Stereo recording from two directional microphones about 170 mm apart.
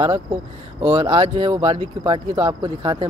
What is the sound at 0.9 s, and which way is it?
Speech, 30° right (ahead or behind).